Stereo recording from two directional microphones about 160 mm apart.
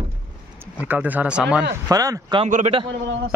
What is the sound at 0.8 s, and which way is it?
Speech, 10° right (ahead or behind).